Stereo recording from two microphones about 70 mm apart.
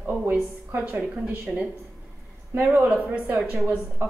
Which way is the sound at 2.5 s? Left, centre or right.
Right.